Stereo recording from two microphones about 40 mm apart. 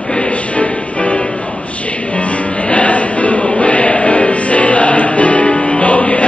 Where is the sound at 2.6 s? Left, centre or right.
Left.